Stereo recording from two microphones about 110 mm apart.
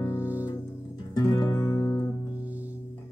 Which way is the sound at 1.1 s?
35° left (ahead or behind).